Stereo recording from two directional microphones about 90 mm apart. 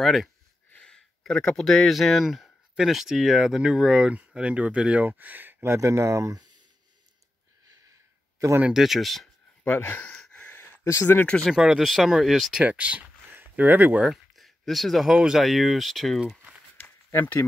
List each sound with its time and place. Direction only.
0.0 s speech: centre (ahead or behind); by 6.4 s 35° right (ahead or behind)
8.7 s speech: centre (ahead or behind)
9.7 s speech: 25° left (ahead or behind)
10.0 s a sound: 15° left (ahead or behind); by 11.1 s 30° left (ahead or behind)
11.1 s speech: 15° left (ahead or behind)
11.4 s speech: 5° right (ahead or behind)
12.6 s speech: 15° right (ahead or behind)
14.0 s speech: centre (ahead or behind)
17.1 s speech: 25° left (ahead or behind)